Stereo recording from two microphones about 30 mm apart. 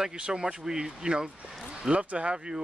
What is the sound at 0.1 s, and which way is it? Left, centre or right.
Speech, right.